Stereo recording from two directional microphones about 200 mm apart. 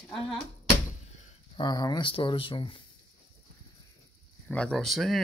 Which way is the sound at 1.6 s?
20° left (ahead or behind).